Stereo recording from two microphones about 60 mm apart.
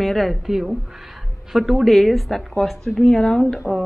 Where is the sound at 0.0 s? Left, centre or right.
Centre.